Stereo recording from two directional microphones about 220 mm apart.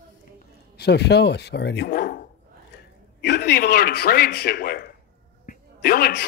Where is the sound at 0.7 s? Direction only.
50° left (ahead or behind).